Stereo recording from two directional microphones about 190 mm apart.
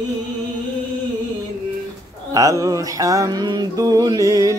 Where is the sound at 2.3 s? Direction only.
15° right (ahead or behind).